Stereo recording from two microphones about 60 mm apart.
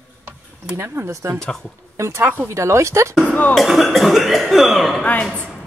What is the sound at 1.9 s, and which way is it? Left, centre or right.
Speech, right.